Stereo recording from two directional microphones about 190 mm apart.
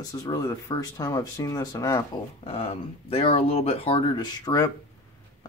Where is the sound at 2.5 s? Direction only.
30° left (ahead or behind).